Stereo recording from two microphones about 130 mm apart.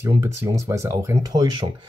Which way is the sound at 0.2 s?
25° right (ahead or behind).